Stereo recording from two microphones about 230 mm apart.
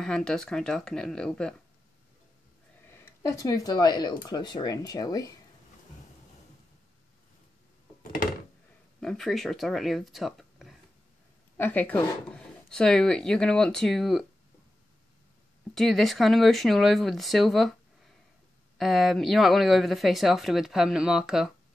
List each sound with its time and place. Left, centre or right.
0.0 s speech: centre
2.9 s speech: centre
9.0 s speech: centre
15.7 s speech: centre
18.8 s speech: centre